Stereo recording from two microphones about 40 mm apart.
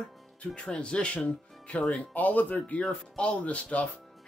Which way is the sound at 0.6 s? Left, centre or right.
Left.